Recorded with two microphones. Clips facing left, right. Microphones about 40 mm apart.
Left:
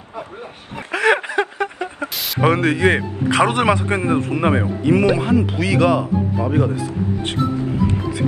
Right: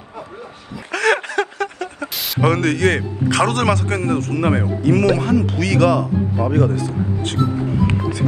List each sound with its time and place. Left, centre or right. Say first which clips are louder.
0.9 s a sound: left 1 dB; centre
2.4 s speech: left 1 dB; centre
7.4 s speech: right 1 dB; centre